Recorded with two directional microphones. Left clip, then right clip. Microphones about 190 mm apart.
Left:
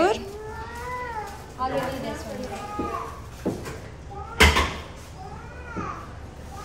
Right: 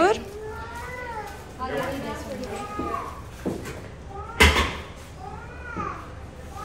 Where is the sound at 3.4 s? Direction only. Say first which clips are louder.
Left 1 dB; 5° left (ahead or behind).